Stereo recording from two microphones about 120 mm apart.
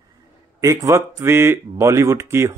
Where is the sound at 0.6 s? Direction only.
25° right (ahead or behind).